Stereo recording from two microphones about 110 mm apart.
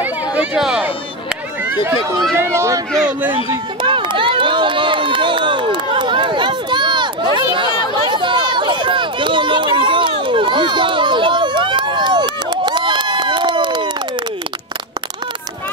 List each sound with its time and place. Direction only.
0.0 s a sound: 10° right (ahead or behind)
2.3 s speech: 25° right (ahead or behind)
3.8 s run: 50° right (ahead or behind)